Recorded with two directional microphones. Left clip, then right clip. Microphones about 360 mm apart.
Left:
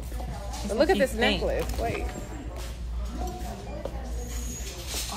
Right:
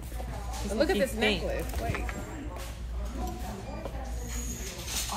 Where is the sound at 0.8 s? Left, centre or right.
Left.